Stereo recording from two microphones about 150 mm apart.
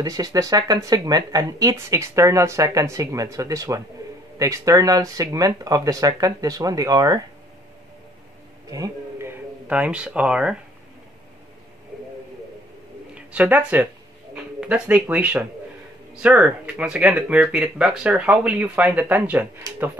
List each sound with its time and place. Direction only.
0.0 s speech: 25° right (ahead or behind)
8.6 s speech: 25° right (ahead or behind); by 10.6 s 5° right (ahead or behind)
13.1 s speech: 10° right (ahead or behind)